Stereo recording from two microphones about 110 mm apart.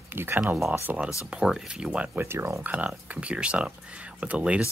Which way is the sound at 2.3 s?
20° right (ahead or behind).